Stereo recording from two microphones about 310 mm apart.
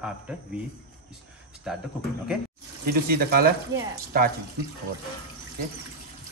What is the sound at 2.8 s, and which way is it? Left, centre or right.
Speech, right.